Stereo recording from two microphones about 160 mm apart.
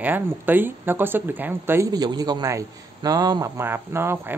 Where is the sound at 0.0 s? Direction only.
10° right (ahead or behind).